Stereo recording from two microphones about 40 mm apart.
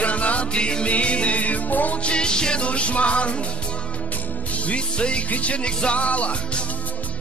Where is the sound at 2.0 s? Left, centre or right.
Left.